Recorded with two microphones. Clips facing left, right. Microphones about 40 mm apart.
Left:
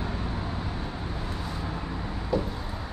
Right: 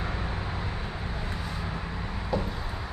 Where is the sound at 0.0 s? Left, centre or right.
Right.